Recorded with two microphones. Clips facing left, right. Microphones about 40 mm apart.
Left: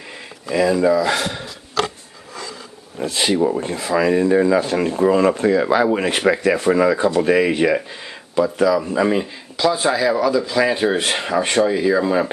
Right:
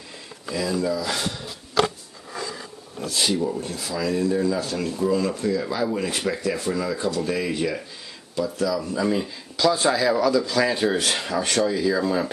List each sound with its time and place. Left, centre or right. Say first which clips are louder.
0.5 s speech: left 9 dB; left
3.1 s speech: left 6 dB; left
9.2 s speech: left 2 dB; centre